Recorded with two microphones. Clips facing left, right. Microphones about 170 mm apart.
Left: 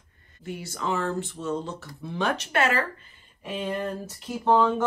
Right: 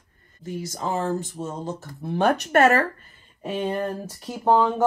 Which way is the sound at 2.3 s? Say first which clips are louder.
Right 7 dB; 45° right (ahead or behind).